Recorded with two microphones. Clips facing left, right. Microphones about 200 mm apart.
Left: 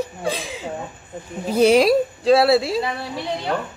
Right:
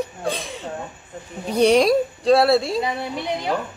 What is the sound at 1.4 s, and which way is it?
Speech, 5° left (ahead or behind).